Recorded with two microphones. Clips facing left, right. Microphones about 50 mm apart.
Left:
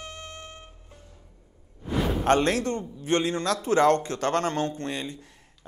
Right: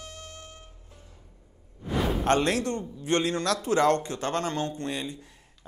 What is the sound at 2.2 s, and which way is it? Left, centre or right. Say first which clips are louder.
A man's voice: left 3 dB; left.